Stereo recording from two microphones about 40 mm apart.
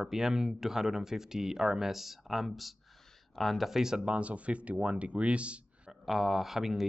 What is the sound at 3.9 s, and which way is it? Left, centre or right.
Speech, right.